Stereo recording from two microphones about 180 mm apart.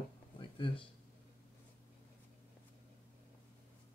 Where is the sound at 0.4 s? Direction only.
30° left (ahead or behind).